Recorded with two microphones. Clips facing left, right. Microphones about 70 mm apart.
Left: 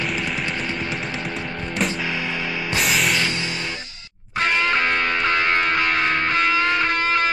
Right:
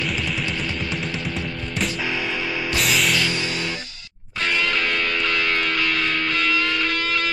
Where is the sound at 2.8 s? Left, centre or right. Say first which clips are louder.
Left 1 dB; centre.